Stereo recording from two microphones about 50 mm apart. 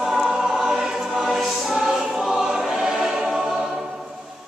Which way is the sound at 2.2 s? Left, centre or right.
Centre.